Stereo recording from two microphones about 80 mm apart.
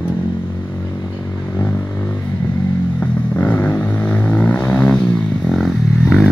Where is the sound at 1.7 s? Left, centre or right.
Left.